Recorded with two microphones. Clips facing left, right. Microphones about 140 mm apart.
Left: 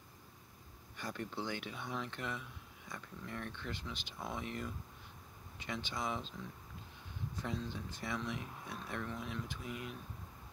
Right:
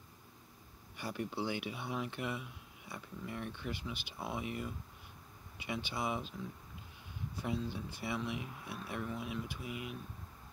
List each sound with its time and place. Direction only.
0.9 s speech: 10° right (ahead or behind)
7.3 s speech: 10° right (ahead or behind)